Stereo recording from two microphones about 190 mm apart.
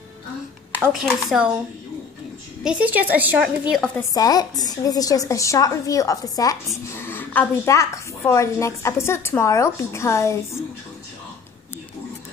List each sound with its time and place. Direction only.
1.0 s speech: centre (ahead or behind)
2.6 s a woman's voice: 5° right (ahead or behind)
4.1 s a woman's voice: 20° left (ahead or behind)